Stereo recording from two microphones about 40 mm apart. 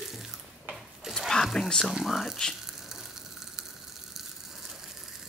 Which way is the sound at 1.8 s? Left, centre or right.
Centre.